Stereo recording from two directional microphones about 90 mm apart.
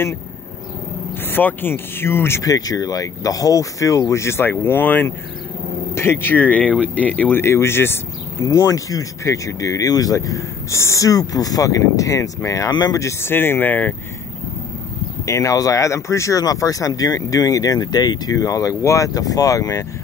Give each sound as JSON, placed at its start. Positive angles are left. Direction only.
{"t": 1.3, "sound": "speech", "side_deg": 25}
{"t": 2.4, "sound": "speech", "side_deg": 40}
{"t": 8.5, "sound": "speech", "side_deg": 40}
{"t": 13.2, "sound": "speech", "side_deg": 25}
{"t": 15.2, "sound": "speech", "side_deg": 35}